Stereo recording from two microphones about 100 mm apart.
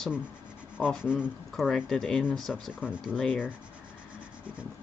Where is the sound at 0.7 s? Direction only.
10° right (ahead or behind).